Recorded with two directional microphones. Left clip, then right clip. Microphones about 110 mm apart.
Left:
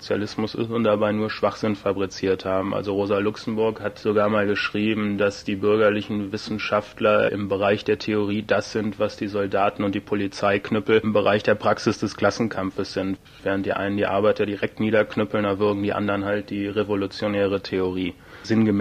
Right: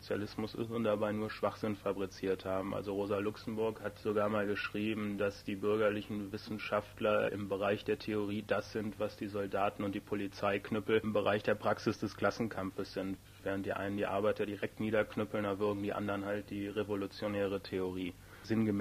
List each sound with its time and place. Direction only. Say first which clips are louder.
0.1 s speech: left 13 dB; 30° left (ahead or behind)